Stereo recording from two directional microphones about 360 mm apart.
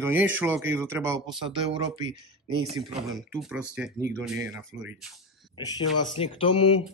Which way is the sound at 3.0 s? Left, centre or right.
Centre.